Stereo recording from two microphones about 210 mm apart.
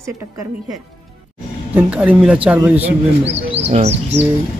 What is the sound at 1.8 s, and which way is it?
A woman's voice, 5° right (ahead or behind).